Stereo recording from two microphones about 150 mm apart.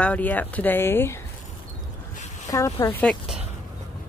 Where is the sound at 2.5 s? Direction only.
15° left (ahead or behind).